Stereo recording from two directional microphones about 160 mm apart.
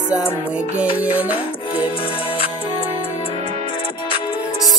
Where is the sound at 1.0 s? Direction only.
10° right (ahead or behind).